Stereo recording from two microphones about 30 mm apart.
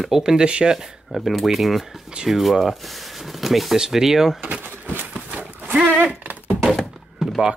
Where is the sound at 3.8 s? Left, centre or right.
Centre.